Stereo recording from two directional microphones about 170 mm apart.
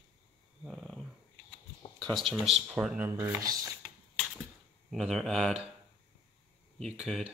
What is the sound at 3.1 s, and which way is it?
Speech, 20° right (ahead or behind).